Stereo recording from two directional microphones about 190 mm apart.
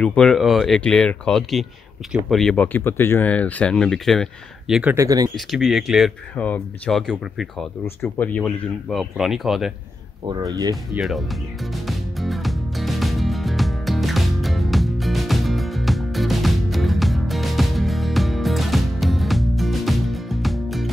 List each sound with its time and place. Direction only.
0.0 s speech: 5° left (ahead or behind)
4.9 s speech: 20° right (ahead or behind)
5.3 s speech: centre (ahead or behind)
10.4 s speech: 20° right (ahead or behind)
11.0 s speech: centre (ahead or behind)
11.7 s music: centre (ahead or behind)